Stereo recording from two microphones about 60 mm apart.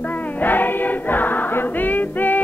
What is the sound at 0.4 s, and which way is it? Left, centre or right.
Choir, left.